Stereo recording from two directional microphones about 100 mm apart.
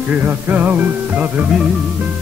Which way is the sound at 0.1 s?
15° right (ahead or behind).